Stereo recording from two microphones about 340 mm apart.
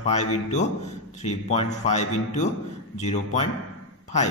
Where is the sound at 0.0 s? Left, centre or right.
Centre.